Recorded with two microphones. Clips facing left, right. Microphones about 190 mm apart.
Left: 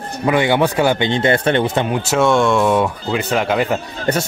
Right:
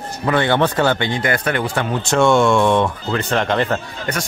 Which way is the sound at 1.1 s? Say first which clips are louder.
Left 5 dB; 25° left (ahead or behind).